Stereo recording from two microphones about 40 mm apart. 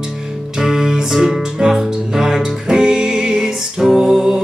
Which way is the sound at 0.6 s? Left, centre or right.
Centre.